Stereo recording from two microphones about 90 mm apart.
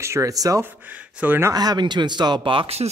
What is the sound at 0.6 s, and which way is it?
Speech, 20° right (ahead or behind).